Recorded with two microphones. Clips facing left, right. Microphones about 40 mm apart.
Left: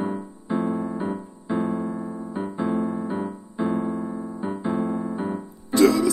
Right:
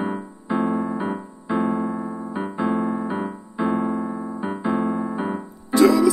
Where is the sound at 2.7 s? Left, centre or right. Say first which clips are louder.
Right 2 dB; right.